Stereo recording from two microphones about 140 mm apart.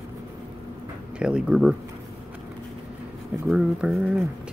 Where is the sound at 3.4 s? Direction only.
10° right (ahead or behind).